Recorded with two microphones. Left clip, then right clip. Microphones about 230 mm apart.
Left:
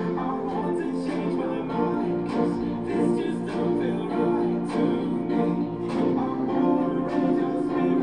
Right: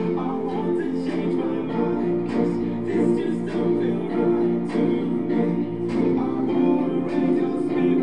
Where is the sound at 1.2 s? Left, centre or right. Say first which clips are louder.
Right 3 dB; right.